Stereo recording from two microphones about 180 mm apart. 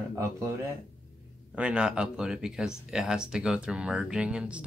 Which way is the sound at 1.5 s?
5° right (ahead or behind).